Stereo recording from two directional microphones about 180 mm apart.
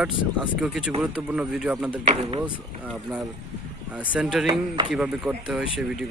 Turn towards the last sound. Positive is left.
turn(degrees=-5)  # may be behind; listen again after turning